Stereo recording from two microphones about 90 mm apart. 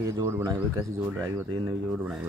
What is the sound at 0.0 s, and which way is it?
Speech, 40° right (ahead or behind).